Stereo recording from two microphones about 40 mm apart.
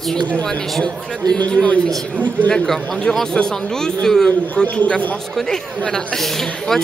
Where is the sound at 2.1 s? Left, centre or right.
Right.